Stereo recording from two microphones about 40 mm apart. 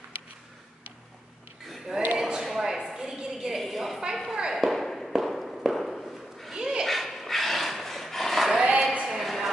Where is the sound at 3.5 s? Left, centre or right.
Centre.